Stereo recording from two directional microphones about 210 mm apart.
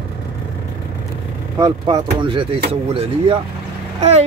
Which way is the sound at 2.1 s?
25° right (ahead or behind).